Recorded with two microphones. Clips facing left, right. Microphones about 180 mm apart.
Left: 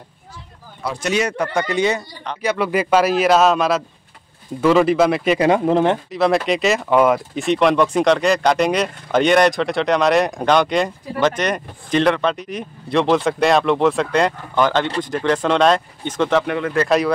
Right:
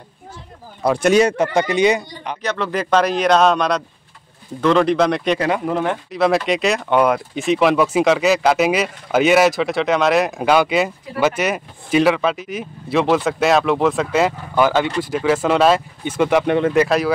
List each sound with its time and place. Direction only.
0.8 s speech: 50° right (ahead or behind)
1.2 s speech: 20° right (ahead or behind)
2.4 s a man's voice: 10° left (ahead or behind)
5.4 s speech: 25° left (ahead or behind)
6.0 s speech: centre (ahead or behind)
16.4 s speech: 25° right (ahead or behind)